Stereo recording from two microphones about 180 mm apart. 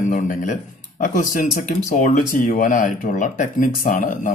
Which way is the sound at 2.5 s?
45° left (ahead or behind).